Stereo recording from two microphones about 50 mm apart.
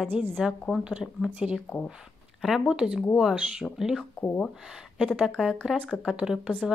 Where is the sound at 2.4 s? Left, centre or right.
Centre.